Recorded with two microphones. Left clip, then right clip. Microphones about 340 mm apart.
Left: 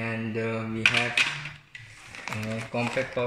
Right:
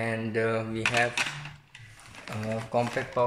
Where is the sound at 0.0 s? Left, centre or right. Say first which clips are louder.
Right 2 dB; right.